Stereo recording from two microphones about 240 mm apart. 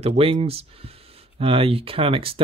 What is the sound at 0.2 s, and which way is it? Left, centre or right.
Speech, right.